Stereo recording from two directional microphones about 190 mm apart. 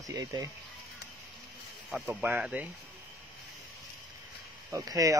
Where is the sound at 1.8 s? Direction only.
5° right (ahead or behind).